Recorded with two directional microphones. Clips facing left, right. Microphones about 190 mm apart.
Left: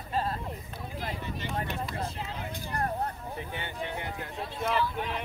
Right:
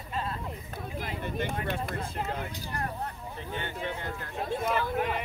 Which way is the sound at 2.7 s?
40° left (ahead or behind).